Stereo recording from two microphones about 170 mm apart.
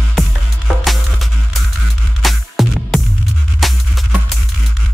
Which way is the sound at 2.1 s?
Centre (ahead or behind).